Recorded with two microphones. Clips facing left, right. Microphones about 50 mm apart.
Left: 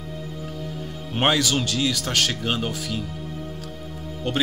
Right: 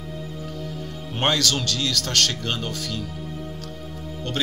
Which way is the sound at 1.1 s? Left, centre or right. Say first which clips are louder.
Left 2 dB; centre.